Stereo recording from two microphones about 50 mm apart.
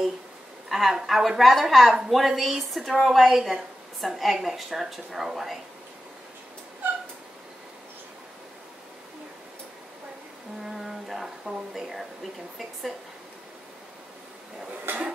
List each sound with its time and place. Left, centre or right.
0.7 s a woman's voice: centre
10.6 s speech: centre
14.9 s dishes: right